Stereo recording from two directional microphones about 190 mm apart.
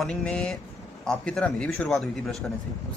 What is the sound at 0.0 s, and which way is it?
Speech, 5° left (ahead or behind).